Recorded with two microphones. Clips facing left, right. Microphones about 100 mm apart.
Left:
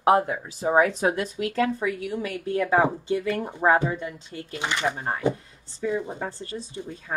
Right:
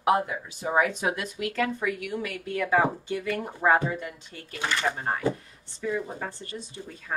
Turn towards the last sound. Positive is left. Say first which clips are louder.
# left 3 dB
turn(degrees=30)  # may be behind; listen again after turning